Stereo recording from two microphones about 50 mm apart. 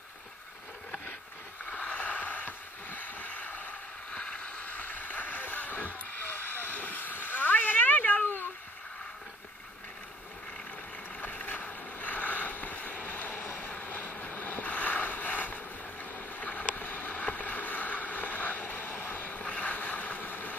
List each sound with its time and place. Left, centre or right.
1.7 s a sound: left
11.1 s boat: left
13.6 s vehicle: left
14.7 s boat: left
19.4 s vehicle: left